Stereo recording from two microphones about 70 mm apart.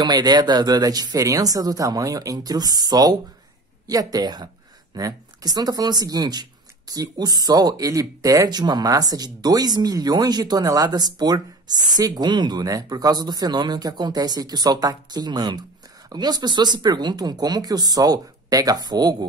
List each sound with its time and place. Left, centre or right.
0.0 s speech: right
3.8 s speech: right
4.9 s speech: right
8.5 s speech: right